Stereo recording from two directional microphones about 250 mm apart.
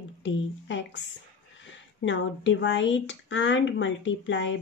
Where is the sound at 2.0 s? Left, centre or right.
Left.